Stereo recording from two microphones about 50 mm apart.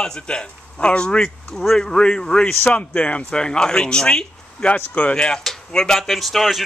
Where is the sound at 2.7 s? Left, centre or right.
Left.